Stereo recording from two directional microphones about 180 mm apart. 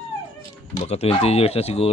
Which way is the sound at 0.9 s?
35° left (ahead or behind).